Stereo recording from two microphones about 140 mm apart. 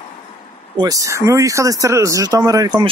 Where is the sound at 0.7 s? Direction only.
25° right (ahead or behind).